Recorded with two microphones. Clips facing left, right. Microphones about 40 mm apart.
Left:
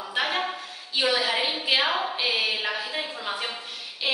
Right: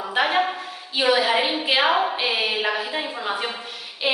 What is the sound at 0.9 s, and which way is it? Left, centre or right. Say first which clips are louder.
A woman's voice: right 5 dB; centre.